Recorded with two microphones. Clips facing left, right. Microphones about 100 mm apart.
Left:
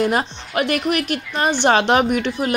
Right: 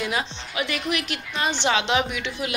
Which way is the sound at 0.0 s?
50° left (ahead or behind).